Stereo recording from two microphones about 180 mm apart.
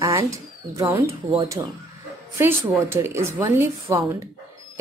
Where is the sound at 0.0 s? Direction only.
15° right (ahead or behind).